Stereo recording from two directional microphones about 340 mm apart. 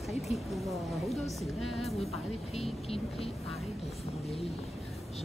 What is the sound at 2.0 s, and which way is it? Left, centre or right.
Speech, centre.